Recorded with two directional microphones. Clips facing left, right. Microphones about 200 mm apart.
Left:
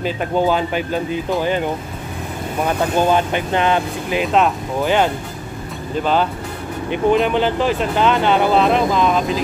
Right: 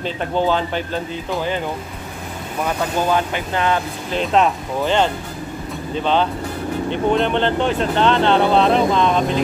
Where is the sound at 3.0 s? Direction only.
20° left (ahead or behind).